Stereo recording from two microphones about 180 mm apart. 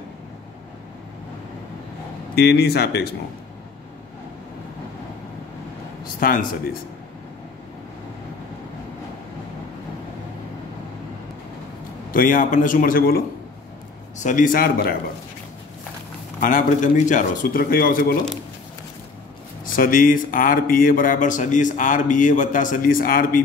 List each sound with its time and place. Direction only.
2.3 s speech: 65° left (ahead or behind)
6.1 s speech: 50° left (ahead or behind)
12.1 s speech: 50° left (ahead or behind)
16.3 s speech: 45° left (ahead or behind)
19.6 s speech: 50° left (ahead or behind)